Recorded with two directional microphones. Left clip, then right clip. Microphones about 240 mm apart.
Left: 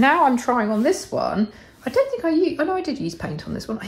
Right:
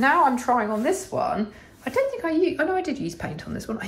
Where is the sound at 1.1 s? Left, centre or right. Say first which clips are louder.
Left 2 dB; left.